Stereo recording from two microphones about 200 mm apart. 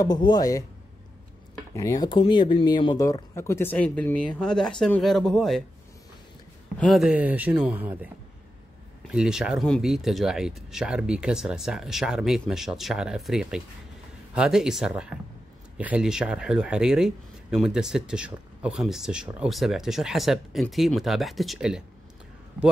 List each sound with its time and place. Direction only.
0.0 s speech: 20° left (ahead or behind)
1.7 s speech: 15° left (ahead or behind)
6.8 s speech: centre (ahead or behind)
9.1 s speech: 5° right (ahead or behind)